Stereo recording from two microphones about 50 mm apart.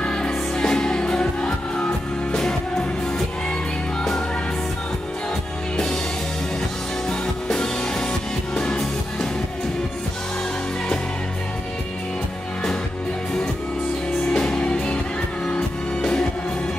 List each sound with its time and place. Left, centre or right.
0.0 s music: centre
7.1 s music: centre
14.3 s music: centre
14.6 s music: left